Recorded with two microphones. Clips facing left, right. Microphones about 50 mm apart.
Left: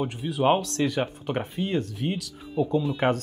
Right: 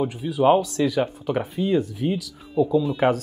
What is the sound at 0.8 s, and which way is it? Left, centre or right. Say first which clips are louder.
Speech: right 4 dB; left.